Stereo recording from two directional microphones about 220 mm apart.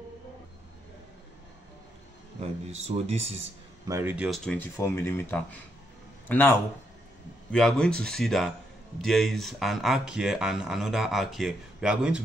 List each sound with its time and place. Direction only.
2.4 s speech: 30° right (ahead or behind)
3.8 s speech: 10° right (ahead or behind)
4.5 s speech: 10° left (ahead or behind)
7.5 s speech: 5° left (ahead or behind)